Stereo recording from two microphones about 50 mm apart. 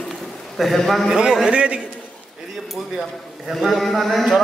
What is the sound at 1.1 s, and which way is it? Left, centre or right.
Speech, centre.